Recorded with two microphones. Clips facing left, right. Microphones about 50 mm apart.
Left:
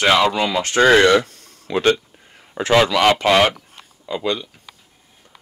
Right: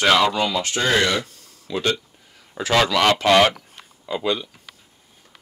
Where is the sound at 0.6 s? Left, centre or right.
Left.